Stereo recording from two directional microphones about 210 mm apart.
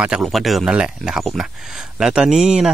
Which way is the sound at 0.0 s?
Centre (ahead or behind).